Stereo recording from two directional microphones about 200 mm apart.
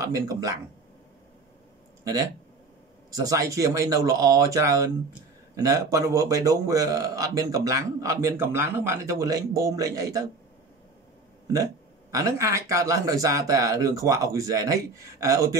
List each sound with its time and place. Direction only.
0.0 s speech: 15° right (ahead or behind)
3.1 s speech: 15° right (ahead or behind)
11.5 s speech: 15° right (ahead or behind)